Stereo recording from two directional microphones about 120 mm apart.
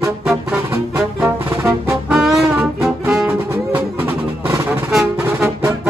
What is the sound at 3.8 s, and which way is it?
Music, 15° right (ahead or behind).